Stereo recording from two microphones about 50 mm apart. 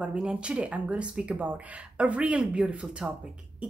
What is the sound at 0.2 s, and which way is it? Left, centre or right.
Speech, right.